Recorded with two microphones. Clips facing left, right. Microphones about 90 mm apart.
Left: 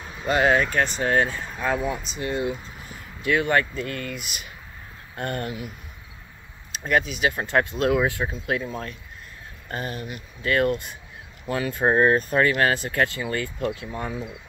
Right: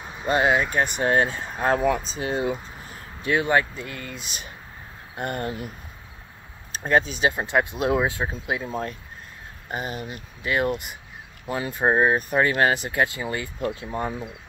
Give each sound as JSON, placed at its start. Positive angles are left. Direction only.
{"t": 0.0, "sound": "speech", "side_deg": -20}
{"t": 1.0, "sound": "speech", "side_deg": -30}
{"t": 6.9, "sound": "speech", "side_deg": -30}
{"t": 7.3, "sound": "speech", "side_deg": -20}